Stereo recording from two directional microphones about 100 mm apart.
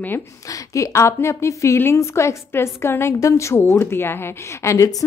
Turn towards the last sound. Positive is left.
turn(degrees=25)  # may be behind; listen again after turning